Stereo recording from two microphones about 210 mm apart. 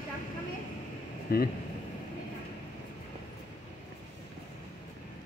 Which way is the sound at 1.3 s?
45° left (ahead or behind).